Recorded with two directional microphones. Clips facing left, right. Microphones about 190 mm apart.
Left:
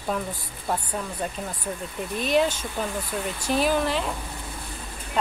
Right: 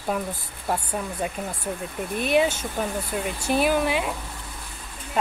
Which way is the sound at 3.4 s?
10° right (ahead or behind).